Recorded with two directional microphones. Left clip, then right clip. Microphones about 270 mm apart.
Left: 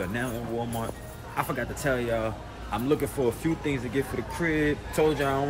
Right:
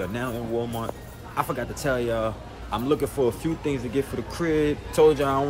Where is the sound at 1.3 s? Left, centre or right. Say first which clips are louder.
Right 2 dB; centre.